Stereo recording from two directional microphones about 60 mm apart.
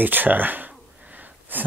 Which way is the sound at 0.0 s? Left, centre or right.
Right.